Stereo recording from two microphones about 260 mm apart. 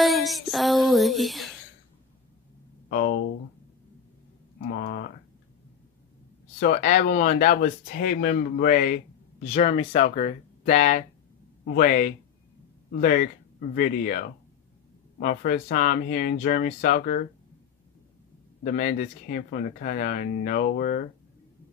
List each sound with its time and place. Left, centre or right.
0.0 s music: centre
2.9 s speech: left
4.7 s speech: left
6.6 s speech: left
18.6 s speech: left